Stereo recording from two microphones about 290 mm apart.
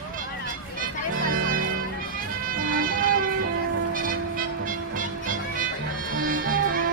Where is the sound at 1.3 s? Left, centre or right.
Right.